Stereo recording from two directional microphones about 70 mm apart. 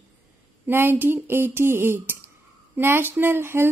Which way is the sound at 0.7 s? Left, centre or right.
Right.